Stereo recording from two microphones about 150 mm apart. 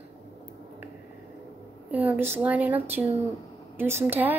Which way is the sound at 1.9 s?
10° right (ahead or behind).